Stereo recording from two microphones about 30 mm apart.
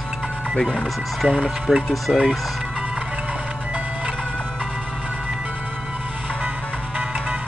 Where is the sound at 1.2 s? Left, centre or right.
Right.